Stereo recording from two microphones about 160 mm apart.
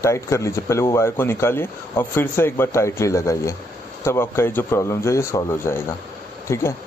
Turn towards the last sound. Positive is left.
turn(degrees=15)  # may be behind; listen again after turning